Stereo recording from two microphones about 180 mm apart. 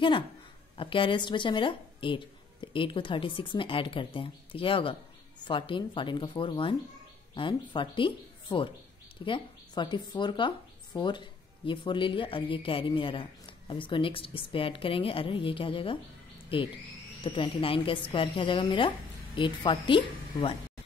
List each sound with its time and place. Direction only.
0.7 s speech: 30° left (ahead or behind)